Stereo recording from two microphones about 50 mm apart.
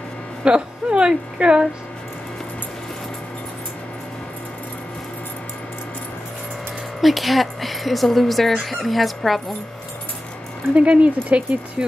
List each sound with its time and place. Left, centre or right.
0.4 s a woman's voice: centre
7.0 s speech: centre
10.7 s a woman's voice: right